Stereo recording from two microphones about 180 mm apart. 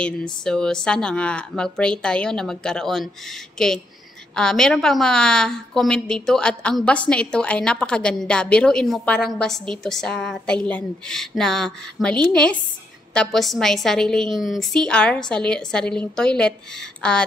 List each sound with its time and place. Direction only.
0.0 s a woman's voice: 5° left (ahead or behind)